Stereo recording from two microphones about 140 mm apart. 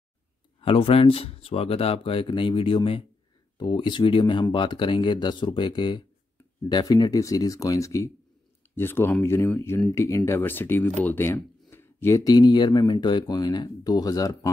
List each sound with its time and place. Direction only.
0.6 s speech: 40° left (ahead or behind); by 14.5 s 25° left (ahead or behind)